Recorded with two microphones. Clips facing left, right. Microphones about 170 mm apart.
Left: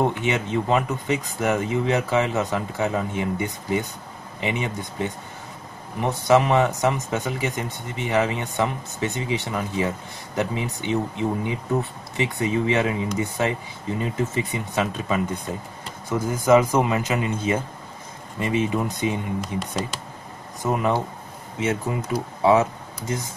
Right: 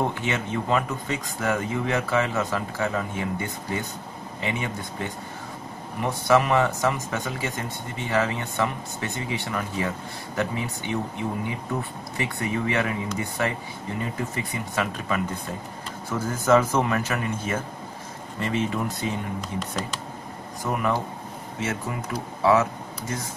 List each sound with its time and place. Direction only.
0.0 s speech: 20° left (ahead or behind)
20.6 s speech: 20° left (ahead or behind)
22.4 s speech: 20° left (ahead or behind)